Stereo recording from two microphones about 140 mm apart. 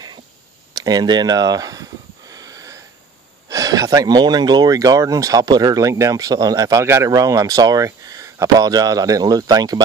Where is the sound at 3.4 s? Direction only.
25° right (ahead or behind).